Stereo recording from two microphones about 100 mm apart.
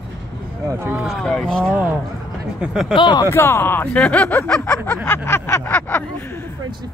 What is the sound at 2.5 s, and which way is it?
Speech, 5° right (ahead or behind).